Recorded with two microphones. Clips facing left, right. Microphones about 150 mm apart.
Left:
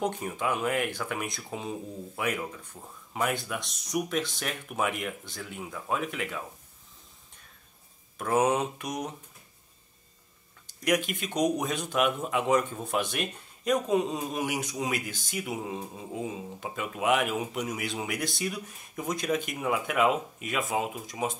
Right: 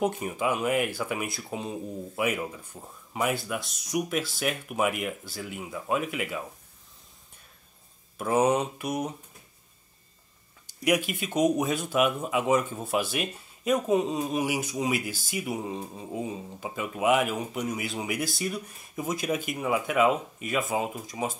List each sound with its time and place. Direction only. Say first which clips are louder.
0.0 s speech: right 3 dB; 5° right (ahead or behind)
8.2 s speech: right 2 dB; centre (ahead or behind)
10.7 s speech: right 2 dB; 10° right (ahead or behind)